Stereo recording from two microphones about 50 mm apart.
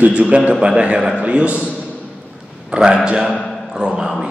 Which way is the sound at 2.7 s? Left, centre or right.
Centre.